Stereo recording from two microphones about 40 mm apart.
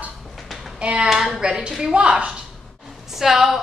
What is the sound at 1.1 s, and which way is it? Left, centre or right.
Speech, centre.